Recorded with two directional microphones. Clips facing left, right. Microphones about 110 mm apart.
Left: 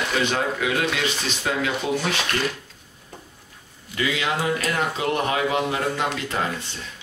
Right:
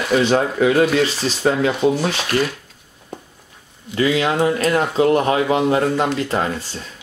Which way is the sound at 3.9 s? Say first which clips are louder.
Right 7 dB; 35° right (ahead or behind).